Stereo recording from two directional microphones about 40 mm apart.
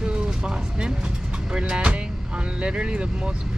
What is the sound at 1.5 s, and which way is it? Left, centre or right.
Vehicle, right.